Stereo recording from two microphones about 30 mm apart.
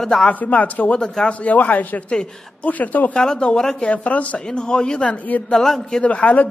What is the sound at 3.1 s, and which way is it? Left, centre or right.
Speech, left.